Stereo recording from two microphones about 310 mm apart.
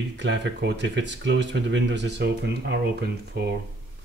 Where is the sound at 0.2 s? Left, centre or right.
Right.